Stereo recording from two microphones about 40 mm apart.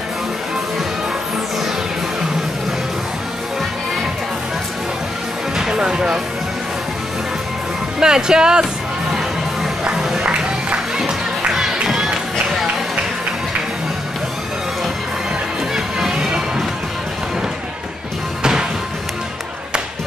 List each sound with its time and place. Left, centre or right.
5.6 s speech: centre
8.0 s speech: centre
10.0 s music: centre
11.9 s crowd: centre
15.7 s music: centre
18.4 s music: centre